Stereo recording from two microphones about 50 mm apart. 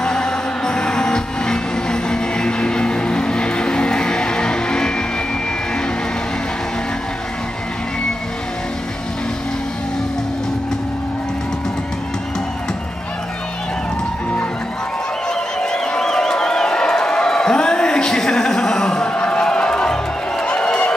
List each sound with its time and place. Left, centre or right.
0.0 s music: centre
15.6 s crowd: centre
19.4 s music: centre